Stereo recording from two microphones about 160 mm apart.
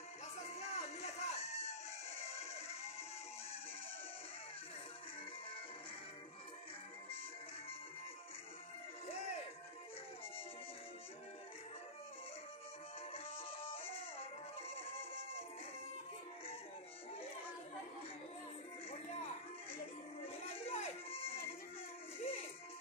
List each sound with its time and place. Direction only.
0.6 s music: 40° left (ahead or behind)
9.0 s music: 40° left (ahead or behind)
13.1 s music: 35° left (ahead or behind)
18.9 s music: 40° left (ahead or behind)
20.2 s baby cry: 40° left (ahead or behind)
22.2 s music: 35° left (ahead or behind)